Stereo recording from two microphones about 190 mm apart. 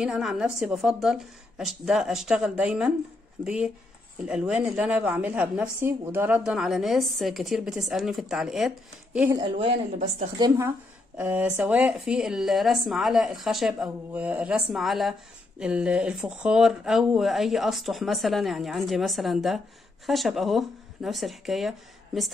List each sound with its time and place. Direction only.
0.0 s a woman's voice: 5° right (ahead or behind)
9.3 s a woman's voice: 25° right (ahead or behind)
11.1 s a woman's voice: 5° right (ahead or behind)